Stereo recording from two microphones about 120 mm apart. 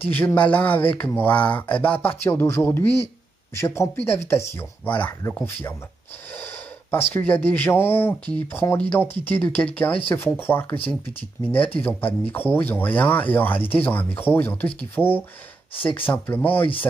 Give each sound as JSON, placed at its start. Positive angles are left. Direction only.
{"t": 0.1, "sound": "speech", "side_deg": 15}
{"t": 11.8, "sound": "speech", "side_deg": 15}
{"t": 15.8, "sound": "speech", "side_deg": 50}
{"t": 16.1, "sound": "speech", "side_deg": 15}